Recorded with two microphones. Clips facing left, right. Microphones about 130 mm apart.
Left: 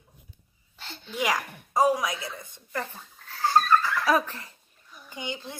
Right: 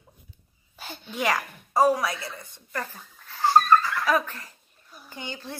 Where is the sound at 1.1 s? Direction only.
10° left (ahead or behind).